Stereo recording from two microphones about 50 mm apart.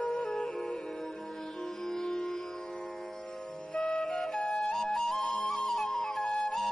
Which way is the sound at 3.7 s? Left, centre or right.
Centre.